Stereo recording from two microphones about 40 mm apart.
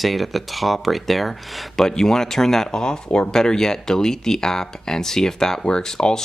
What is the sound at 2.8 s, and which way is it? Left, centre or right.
Speech, left.